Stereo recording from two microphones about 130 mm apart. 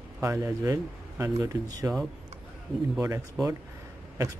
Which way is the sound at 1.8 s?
10° right (ahead or behind).